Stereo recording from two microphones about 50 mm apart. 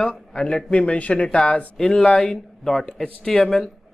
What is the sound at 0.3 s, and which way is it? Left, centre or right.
A man's voice, centre.